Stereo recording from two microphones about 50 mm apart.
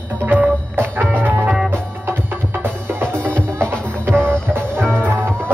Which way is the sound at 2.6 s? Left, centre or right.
Right.